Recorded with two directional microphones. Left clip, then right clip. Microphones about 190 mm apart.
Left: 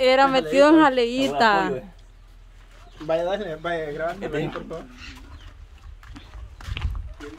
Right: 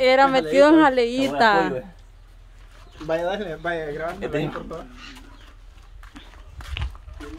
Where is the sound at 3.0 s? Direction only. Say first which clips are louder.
Left 1 dB; 20° left (ahead or behind).